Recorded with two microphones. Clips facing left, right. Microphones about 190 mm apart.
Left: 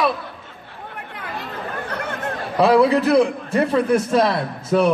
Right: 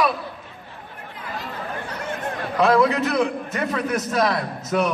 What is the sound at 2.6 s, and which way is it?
A man's voice, 35° left (ahead or behind).